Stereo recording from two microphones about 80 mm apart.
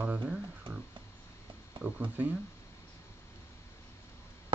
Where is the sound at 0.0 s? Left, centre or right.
Centre.